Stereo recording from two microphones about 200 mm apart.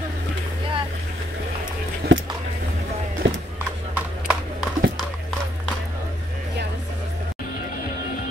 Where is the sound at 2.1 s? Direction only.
70° right (ahead or behind).